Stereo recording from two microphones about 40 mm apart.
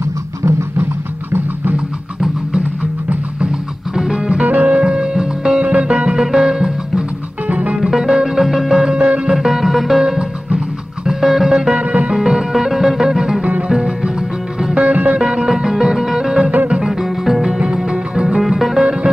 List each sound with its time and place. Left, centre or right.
3.9 s music: centre
4.5 s music: right
4.7 s music: right
6.2 s music: centre
7.4 s music: right
7.7 s music: centre
8.9 s music: right
9.3 s music: centre
10.0 s music: right
11.1 s music: centre
11.8 s music: right
12.1 s music: centre
14.8 s music: right
15.1 s music: centre